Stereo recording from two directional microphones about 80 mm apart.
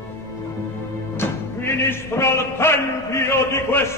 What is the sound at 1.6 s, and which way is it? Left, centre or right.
A man's voice, left.